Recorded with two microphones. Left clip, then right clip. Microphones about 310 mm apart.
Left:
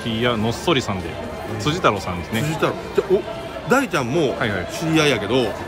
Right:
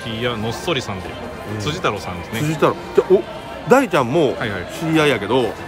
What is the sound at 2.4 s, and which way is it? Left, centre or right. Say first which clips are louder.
A man's voice: right 6 dB; right.